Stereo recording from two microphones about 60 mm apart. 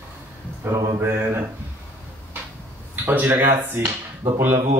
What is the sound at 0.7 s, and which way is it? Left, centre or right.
Speech, right.